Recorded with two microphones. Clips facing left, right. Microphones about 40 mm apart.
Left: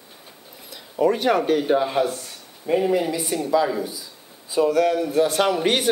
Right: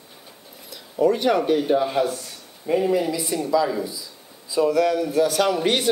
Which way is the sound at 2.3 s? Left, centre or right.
Centre.